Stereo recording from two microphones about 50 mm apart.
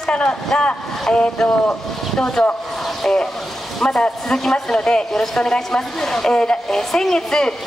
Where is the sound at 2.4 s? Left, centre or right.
Centre.